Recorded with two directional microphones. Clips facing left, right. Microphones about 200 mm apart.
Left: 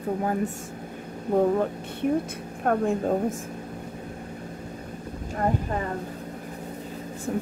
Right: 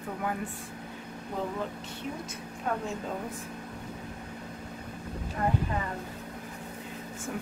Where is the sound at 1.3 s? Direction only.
50° left (ahead or behind).